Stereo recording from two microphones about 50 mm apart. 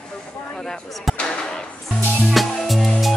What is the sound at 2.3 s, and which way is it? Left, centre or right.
Music, centre.